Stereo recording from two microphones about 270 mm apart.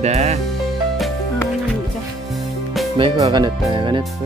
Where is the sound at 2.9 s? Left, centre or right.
Centre.